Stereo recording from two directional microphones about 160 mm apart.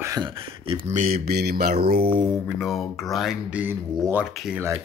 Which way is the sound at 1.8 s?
70° right (ahead or behind).